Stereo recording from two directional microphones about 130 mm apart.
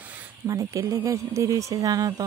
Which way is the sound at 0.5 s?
25° right (ahead or behind).